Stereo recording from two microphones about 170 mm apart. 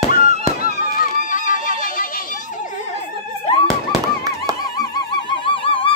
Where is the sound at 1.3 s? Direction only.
50° left (ahead or behind).